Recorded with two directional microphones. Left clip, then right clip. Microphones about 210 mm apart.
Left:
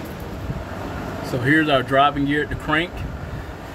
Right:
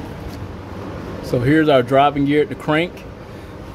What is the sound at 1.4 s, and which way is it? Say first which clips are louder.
Speech: right 3 dB; 25° right (ahead or behind).